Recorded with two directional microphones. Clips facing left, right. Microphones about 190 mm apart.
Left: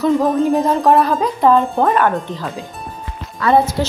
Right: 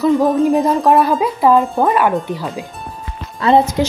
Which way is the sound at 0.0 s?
Centre (ahead or behind).